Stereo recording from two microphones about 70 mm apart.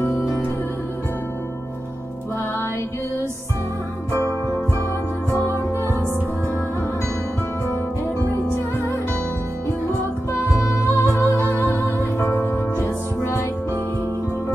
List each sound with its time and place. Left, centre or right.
4.1 s music: left
10.8 s music: left
11.4 s music: left